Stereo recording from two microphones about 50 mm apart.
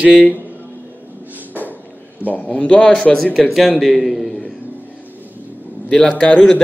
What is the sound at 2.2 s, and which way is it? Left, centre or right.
Speech, left.